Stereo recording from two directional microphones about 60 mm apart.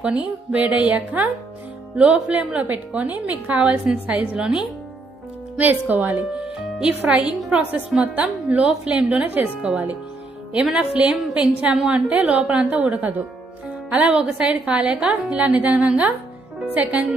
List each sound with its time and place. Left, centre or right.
0.0 s a woman's voice: centre
3.7 s a woman's voice: centre
4.1 s a woman's voice: right
4.4 s a woman's voice: centre
5.6 s a woman's voice: right
6.3 s music: centre
7.0 s a woman's voice: right